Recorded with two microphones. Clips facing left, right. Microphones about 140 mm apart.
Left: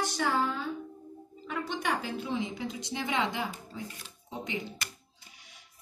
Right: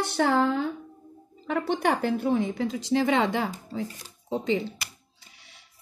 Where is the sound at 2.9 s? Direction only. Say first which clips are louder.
Right 9 dB; 65° right (ahead or behind).